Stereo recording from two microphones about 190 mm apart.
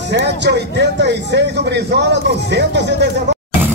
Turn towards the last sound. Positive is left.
turn(degrees=-65)  # may be behind; listen again after turning